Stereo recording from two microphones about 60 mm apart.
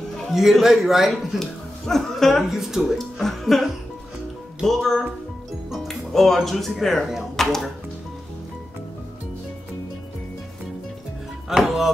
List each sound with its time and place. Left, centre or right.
0.3 s a man's voice: centre
1.4 s speech: centre
2.4 s speech: centre
4.6 s a man's voice: centre
11.4 s speech: centre